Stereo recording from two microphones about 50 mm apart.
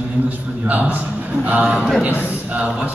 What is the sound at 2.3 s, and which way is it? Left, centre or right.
Speech, right.